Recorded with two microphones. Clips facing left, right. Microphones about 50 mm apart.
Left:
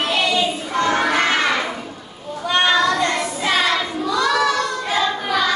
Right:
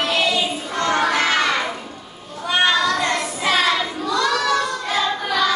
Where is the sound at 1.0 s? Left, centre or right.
Centre.